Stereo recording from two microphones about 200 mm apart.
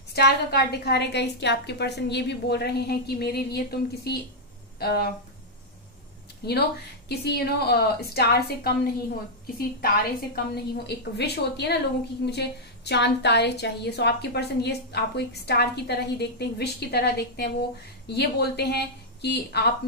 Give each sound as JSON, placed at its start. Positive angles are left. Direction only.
{"t": 0.1, "sound": "a woman's voice", "side_deg": 55}
{"t": 6.4, "sound": "a woman's voice", "side_deg": 55}
{"t": 9.8, "sound": "a woman's voice", "side_deg": 50}